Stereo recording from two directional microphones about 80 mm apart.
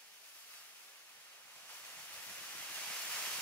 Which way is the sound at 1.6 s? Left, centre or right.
Left.